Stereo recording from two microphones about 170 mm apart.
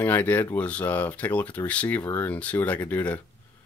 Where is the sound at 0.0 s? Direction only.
10° left (ahead or behind).